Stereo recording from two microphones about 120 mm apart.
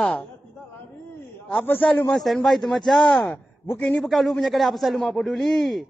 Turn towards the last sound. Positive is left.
turn(degrees=0)  # may be behind; listen again after turning